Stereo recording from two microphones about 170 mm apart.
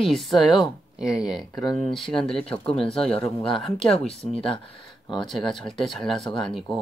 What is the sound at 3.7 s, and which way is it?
Speech, 35° left (ahead or behind).